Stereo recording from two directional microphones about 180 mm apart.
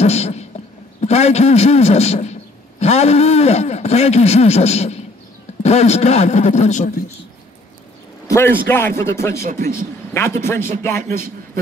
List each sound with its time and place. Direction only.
0.0 s a sound: 35° left (ahead or behind)
1.0 s a man's voice: 35° left (ahead or behind)
8.3 s a man's voice: 15° left (ahead or behind)
11.1 s a man's voice: 55° right (ahead or behind)